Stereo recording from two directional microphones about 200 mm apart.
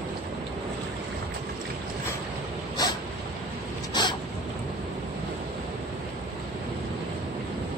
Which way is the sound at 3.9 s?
20° left (ahead or behind).